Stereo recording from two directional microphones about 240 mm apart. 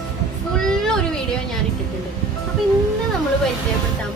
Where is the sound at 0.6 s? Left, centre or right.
Centre.